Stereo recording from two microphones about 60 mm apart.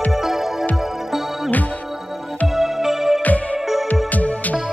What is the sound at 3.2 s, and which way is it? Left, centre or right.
Music, left.